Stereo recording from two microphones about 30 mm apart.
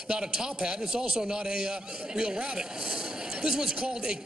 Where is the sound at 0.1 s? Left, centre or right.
Right.